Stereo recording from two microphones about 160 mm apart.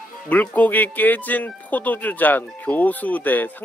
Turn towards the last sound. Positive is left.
turn(degrees=10)  # may be behind; listen again after turning